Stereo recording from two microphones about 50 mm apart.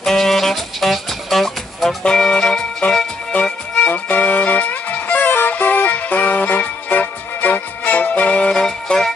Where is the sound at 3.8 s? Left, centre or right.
Left.